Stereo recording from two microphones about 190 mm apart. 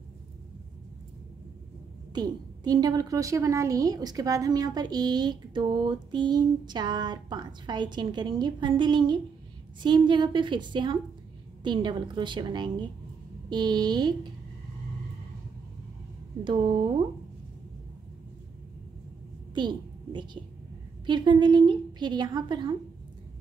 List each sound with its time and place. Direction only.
2.1 s a woman's voice: 20° right (ahead or behind)
16.4 s a woman's voice: 25° right (ahead or behind)
19.5 s a sound: 25° right (ahead or behind)
21.0 s a woman's voice: 25° right (ahead or behind)